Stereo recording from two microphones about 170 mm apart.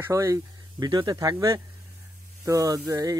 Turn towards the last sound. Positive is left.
turn(degrees=-20)  # may be behind; listen again after turning